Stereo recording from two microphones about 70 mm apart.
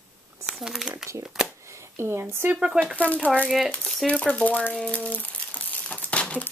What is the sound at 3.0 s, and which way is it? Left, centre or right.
Speech, left.